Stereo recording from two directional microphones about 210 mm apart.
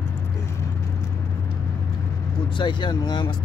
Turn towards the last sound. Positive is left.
turn(degrees=20)  # may be behind; listen again after turning